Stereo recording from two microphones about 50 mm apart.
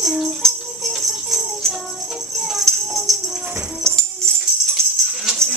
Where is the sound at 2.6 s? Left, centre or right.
Centre.